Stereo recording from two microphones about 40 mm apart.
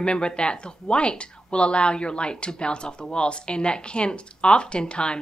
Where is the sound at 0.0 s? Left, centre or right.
Left.